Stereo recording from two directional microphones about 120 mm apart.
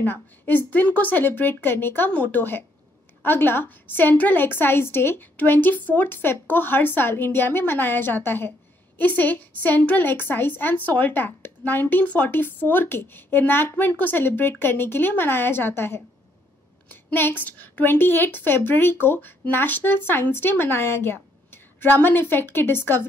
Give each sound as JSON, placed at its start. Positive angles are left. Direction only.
{"t": 0.0, "sound": "a woman's voice", "side_deg": 15}